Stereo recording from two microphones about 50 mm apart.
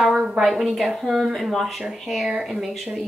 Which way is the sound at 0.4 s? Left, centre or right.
Centre.